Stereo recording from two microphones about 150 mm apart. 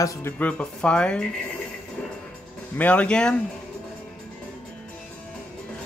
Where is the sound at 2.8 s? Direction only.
10° left (ahead or behind).